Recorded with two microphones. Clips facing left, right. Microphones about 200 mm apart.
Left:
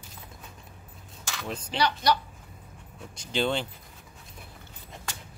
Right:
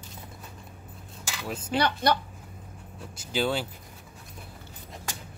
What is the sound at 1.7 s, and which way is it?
Speech, 55° right (ahead or behind).